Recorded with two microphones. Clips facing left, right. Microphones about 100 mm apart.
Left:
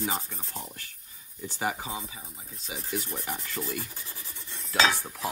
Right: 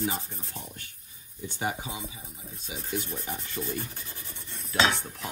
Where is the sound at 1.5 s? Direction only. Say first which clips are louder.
Left 1 dB; 45° left (ahead or behind).